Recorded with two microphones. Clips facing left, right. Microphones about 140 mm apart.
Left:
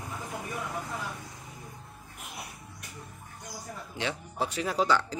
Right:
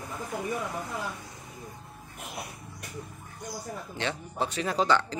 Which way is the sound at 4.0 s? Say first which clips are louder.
Right 1 dB; 10° left (ahead or behind).